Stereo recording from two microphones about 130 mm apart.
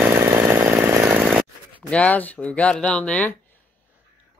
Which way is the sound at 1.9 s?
10° left (ahead or behind).